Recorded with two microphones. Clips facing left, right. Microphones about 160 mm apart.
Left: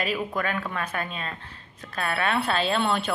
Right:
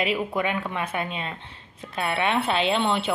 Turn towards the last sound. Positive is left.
turn(degrees=-20)  # may be behind; listen again after turning